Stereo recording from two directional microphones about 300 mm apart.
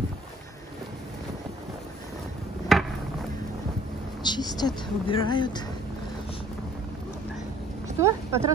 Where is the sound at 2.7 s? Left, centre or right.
Centre.